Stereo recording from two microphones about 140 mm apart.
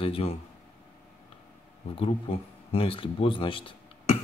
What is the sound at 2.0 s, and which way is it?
Speech, 45° left (ahead or behind).